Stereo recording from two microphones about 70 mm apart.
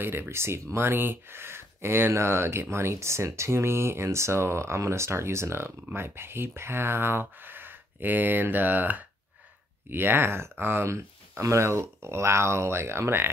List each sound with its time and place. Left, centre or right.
0.0 s speech: right